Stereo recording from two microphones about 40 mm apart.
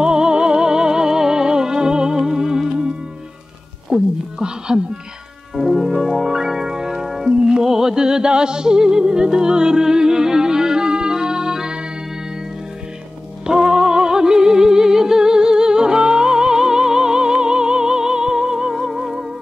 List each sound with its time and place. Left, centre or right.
0.0 s music: right
3.9 s a sound: centre
5.5 s music: centre
13.5 s music: centre